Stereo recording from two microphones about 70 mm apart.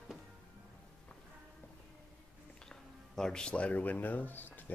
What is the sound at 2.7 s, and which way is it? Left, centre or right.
Speech, centre.